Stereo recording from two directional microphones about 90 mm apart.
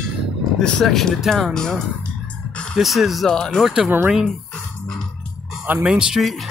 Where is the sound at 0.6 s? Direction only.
5° left (ahead or behind).